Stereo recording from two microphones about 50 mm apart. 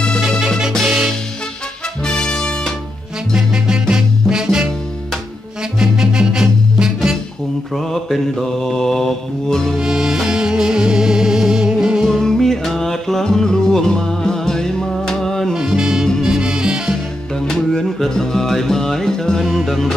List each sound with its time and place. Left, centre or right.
0.8 s music: centre
2.0 s music: centre
3.3 s music: centre
5.8 s music: centre
7.7 s mantra: centre
9.8 s music: centre
12.2 s music: centre
15.5 s music: centre
17.5 s music: centre